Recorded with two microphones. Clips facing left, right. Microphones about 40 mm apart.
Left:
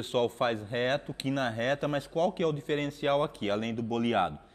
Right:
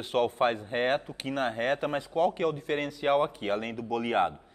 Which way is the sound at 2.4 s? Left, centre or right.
Left.